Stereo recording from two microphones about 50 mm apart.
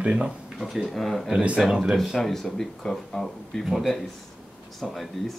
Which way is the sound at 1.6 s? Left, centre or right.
Centre.